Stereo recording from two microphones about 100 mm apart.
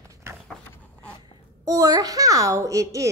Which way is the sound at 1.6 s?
35° right (ahead or behind).